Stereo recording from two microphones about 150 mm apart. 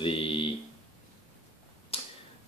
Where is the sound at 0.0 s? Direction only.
35° left (ahead or behind).